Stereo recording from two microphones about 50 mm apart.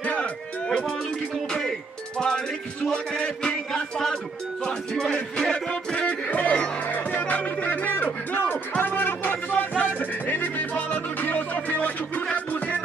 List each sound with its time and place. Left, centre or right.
0.0 s music: left
2.1 s music: centre
3.7 s a sound: centre
4.6 s music: centre